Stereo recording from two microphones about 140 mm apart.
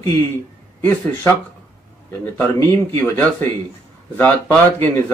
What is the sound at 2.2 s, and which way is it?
A man's voice, 15° left (ahead or behind).